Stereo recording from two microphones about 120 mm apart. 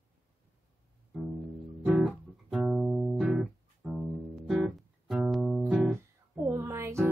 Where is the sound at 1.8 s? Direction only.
5° right (ahead or behind).